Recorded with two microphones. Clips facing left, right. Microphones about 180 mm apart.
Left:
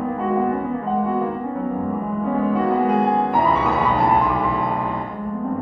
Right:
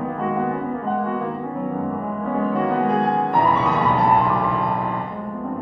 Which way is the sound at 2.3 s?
Centre (ahead or behind).